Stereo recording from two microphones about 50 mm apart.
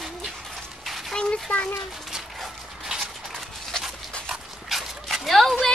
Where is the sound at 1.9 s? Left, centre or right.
Centre.